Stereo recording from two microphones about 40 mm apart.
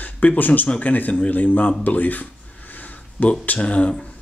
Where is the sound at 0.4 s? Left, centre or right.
Left.